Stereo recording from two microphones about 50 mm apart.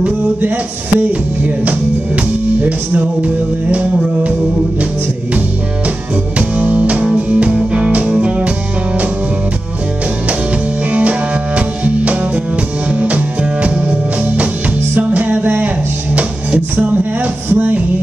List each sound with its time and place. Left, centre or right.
1.4 s speech: right
6.3 s music: right
10.9 s music: right